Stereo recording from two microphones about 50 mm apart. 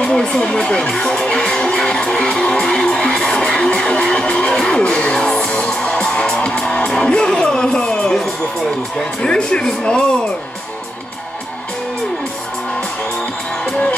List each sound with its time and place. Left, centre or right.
0.0 s music: centre
7.1 s a sound: centre
8.9 s speech: centre